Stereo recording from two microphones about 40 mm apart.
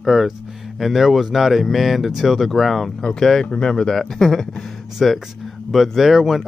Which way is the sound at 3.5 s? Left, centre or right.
Centre.